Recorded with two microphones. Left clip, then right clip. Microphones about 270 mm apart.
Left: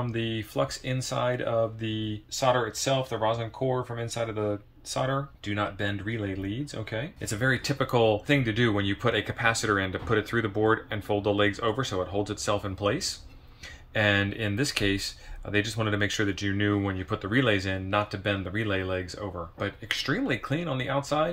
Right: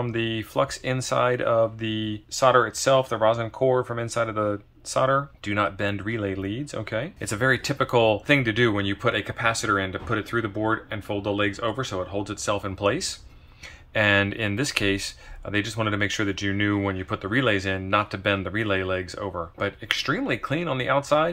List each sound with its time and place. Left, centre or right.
0.0 s speech: centre